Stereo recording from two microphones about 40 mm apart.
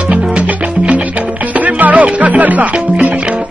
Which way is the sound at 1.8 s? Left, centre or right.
Right.